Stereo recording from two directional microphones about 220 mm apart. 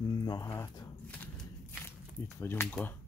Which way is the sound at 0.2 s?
15° left (ahead or behind).